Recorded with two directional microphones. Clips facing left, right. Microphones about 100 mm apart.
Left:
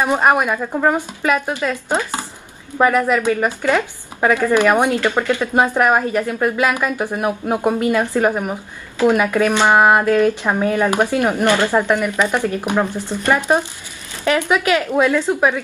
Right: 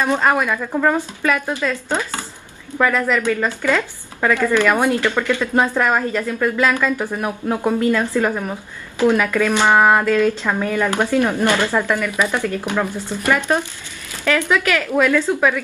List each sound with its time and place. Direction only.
0.0 s speech: 20° left (ahead or behind)